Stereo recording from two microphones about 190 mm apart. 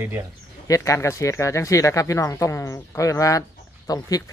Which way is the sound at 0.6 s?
15° left (ahead or behind).